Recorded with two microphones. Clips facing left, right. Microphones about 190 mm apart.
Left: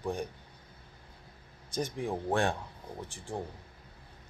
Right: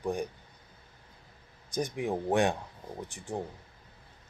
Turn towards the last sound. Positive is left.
turn(degrees=-15)  # may be behind; listen again after turning